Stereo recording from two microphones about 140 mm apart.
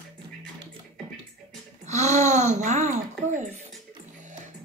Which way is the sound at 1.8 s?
55° right (ahead or behind).